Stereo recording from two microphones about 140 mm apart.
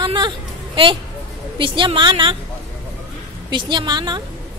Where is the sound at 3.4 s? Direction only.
35° right (ahead or behind).